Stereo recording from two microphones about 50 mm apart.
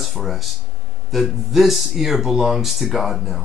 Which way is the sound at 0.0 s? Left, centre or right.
Centre.